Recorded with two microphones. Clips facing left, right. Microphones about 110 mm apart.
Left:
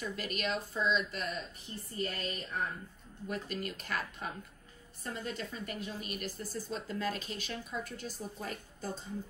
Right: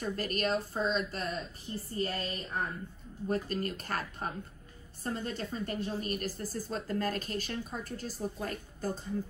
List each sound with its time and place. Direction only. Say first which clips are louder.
0.0 s a woman's voice: right 4 dB; 40° right (ahead or behind)